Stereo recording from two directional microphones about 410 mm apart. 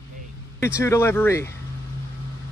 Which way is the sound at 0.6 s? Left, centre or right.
Centre.